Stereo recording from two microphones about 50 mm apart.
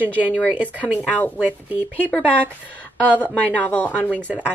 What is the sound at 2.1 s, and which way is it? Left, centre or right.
A woman's voice, left.